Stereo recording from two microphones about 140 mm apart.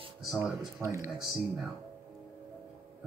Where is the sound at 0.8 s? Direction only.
20° right (ahead or behind).